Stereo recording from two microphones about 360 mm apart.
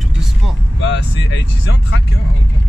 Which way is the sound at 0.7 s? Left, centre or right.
Left.